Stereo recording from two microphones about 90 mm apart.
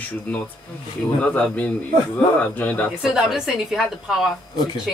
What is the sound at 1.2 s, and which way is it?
Speech, 15° left (ahead or behind).